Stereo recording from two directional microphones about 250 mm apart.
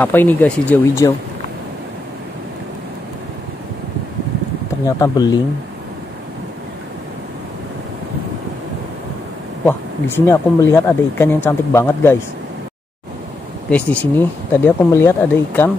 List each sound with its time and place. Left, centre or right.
0.0 s speech: centre
4.8 s speech: centre
9.7 s speech: centre
13.7 s speech: centre